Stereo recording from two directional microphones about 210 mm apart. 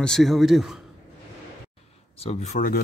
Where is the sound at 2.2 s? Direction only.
30° left (ahead or behind).